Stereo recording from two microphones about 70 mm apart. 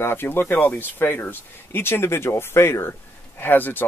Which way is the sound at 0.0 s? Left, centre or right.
Left.